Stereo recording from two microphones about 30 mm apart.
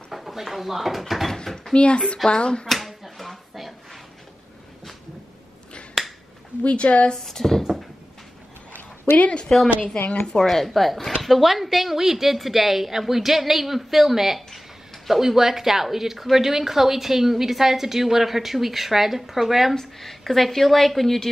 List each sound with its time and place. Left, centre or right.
0.1 s a sound: centre
0.5 s speech: centre
1.3 s speech: centre
1.8 s speech: left
2.6 s a sound: centre
6.0 s finger snapping: centre
6.6 s speech: left
7.1 s speech: centre
9.2 s speech: left
10.4 s a woman's voice: centre
20.0 s a woman's voice: centre